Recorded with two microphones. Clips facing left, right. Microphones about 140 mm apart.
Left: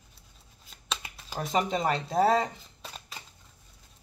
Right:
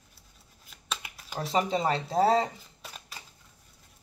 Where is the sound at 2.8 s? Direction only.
25° left (ahead or behind).